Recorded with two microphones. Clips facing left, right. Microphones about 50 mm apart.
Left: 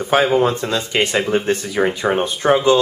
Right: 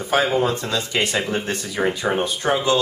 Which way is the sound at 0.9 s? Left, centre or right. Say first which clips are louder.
Left 6 dB; left.